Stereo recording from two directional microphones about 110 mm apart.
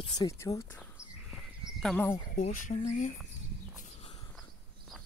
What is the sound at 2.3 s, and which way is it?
Speech, 90° left.